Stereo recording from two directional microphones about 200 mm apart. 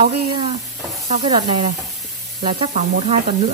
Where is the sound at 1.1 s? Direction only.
35° right (ahead or behind).